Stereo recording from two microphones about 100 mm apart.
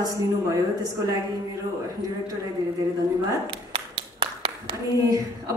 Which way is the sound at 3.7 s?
60° right (ahead or behind).